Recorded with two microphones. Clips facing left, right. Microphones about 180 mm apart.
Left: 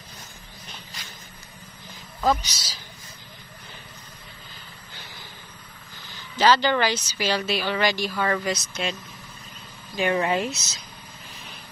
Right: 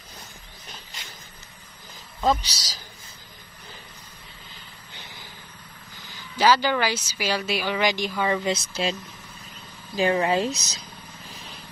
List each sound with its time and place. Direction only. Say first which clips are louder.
2.2 s speech: even; 35° right (ahead or behind)
6.3 s speech: left 1 dB; 10° right (ahead or behind)
8.5 s speech: right 2 dB; 30° right (ahead or behind)
9.9 s speech: right 1 dB; 30° right (ahead or behind)